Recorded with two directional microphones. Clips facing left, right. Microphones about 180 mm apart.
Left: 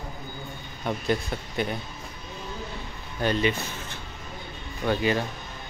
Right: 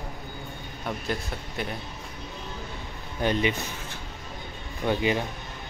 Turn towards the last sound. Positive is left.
turn(degrees=-15)  # may be behind; listen again after turning